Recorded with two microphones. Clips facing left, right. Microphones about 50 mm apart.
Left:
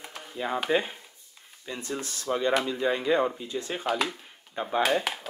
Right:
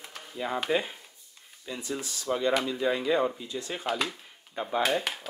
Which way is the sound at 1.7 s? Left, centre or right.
Left.